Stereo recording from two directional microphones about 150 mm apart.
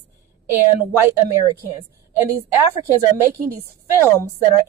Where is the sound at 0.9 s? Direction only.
20° right (ahead or behind).